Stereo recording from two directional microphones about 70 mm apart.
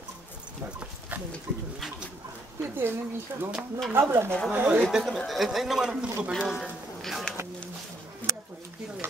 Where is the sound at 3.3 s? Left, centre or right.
Right.